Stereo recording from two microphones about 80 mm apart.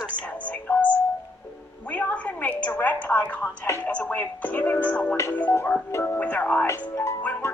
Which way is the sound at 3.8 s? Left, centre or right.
Centre.